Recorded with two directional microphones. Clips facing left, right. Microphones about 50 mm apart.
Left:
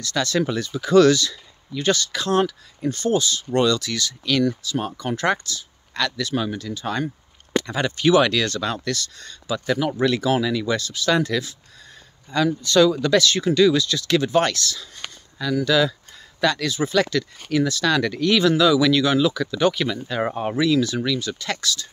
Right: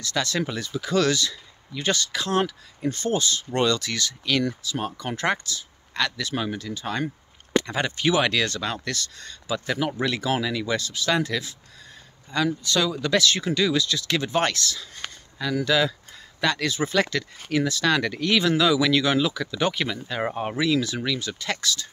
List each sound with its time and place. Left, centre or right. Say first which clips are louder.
0.0 s speech: left 4 dB; centre
1.1 s speech: left 3 dB; centre
4.2 s speech: left 5 dB; centre
20.1 s speech: left 3 dB; centre; by 21.8 s right